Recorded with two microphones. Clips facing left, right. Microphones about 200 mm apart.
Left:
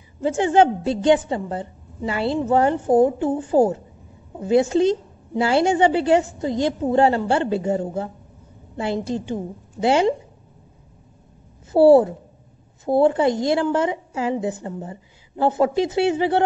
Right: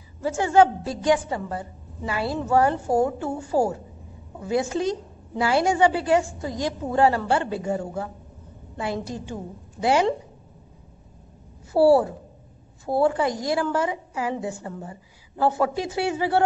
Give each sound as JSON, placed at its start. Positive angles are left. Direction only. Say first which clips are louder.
{"t": 0.2, "sound": "a woman's voice", "louder": "left 2 dB", "side_deg": 20}
{"t": 11.7, "sound": "a woman's voice", "louder": "left 5 dB", "side_deg": 20}